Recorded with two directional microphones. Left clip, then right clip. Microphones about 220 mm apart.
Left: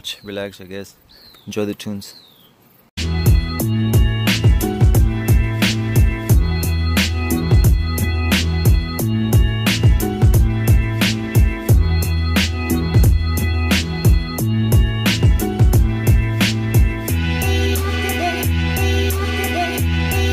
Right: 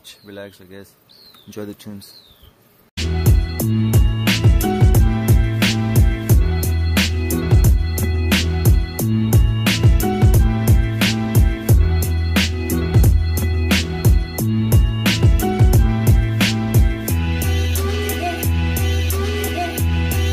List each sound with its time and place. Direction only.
1.5 s speech: 30° left (ahead or behind)
3.0 s music: centre (ahead or behind)